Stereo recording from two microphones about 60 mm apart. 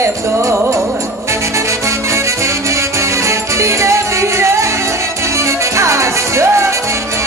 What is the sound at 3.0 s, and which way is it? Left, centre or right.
Music, right.